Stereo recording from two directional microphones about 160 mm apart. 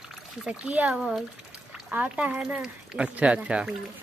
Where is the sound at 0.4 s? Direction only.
5° right (ahead or behind).